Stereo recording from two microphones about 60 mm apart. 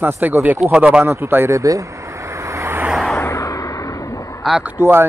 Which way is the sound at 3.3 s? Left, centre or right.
Left.